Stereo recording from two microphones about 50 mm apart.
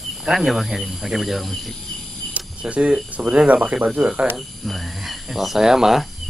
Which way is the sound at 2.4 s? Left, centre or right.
Right.